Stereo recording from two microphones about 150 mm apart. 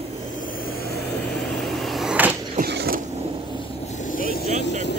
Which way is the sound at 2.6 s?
90° right.